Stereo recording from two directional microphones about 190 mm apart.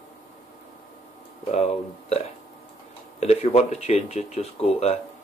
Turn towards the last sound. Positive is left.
turn(degrees=35)  # may be behind; listen again after turning